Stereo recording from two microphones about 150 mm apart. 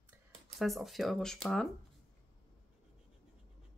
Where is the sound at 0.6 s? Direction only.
Centre (ahead or behind).